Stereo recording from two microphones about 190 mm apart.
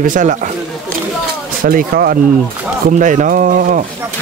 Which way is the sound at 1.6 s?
50° right (ahead or behind).